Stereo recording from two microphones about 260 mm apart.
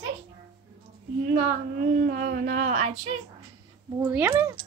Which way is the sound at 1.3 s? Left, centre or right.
Right.